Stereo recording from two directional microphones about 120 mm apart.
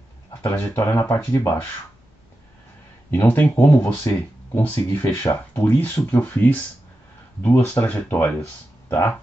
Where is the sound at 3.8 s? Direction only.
25° left (ahead or behind).